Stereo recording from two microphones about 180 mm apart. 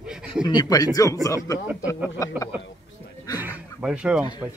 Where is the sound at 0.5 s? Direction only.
20° left (ahead or behind).